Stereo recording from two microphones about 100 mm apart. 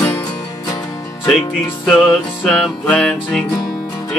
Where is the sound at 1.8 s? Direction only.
Centre (ahead or behind).